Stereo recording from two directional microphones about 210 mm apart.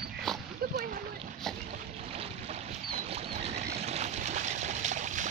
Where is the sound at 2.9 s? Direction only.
30° right (ahead or behind).